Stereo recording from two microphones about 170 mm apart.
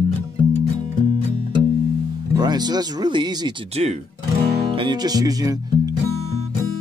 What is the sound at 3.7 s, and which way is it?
Speech, 40° right (ahead or behind).